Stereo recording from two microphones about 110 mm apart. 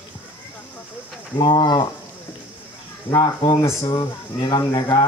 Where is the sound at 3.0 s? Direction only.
40° left (ahead or behind).